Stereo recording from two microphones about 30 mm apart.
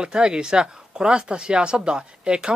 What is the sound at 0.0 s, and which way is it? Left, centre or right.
Speech, right.